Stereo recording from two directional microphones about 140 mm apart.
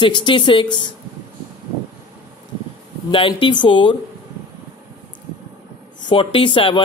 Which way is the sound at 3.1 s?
40° left (ahead or behind).